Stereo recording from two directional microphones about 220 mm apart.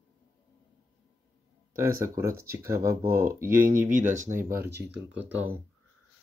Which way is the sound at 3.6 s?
35° right (ahead or behind).